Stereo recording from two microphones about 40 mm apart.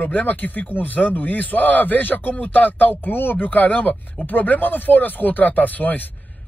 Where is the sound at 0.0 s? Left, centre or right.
Left.